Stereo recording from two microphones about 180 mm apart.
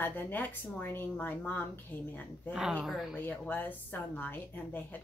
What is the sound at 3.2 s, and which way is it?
Speech, 10° left (ahead or behind).